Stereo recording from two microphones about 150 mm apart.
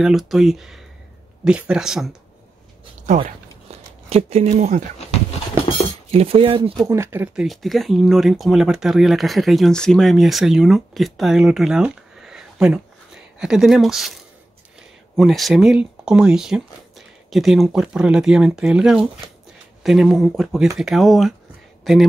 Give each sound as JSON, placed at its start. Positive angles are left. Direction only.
{"t": 0.0, "sound": "speech", "side_deg": 0}
{"t": 3.3, "sound": "a sound", "side_deg": -45}
{"t": 6.1, "sound": "speech", "side_deg": -40}
{"t": 6.9, "sound": "speech", "side_deg": -15}
{"t": 7.4, "sound": "speech", "side_deg": 0}